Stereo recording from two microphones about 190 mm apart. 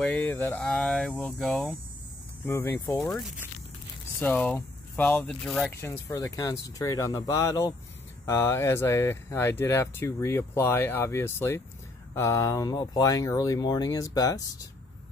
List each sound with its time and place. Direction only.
0.0 s speech: 10° left (ahead or behind)
2.4 s speech: 15° left (ahead or behind)
4.2 s speech: 10° left (ahead or behind)
5.7 s speech: 15° left (ahead or behind)